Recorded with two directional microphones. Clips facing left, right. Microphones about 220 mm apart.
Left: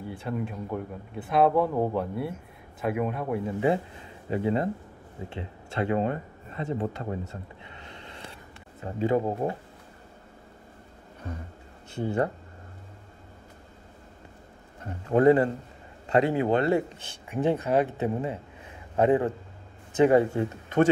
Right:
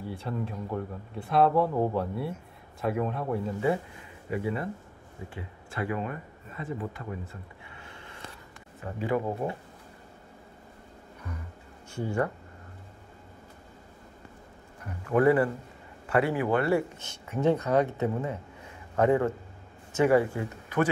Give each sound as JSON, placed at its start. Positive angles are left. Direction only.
{"t": 0.1, "sound": "speech", "side_deg": 0}
{"t": 4.3, "sound": "speech", "side_deg": 25}
{"t": 8.8, "sound": "speech", "side_deg": 25}
{"t": 11.9, "sound": "speech", "side_deg": 20}
{"t": 14.8, "sound": "a man's voice", "side_deg": 25}